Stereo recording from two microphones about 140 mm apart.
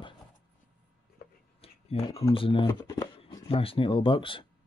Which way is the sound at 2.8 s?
25° left (ahead or behind).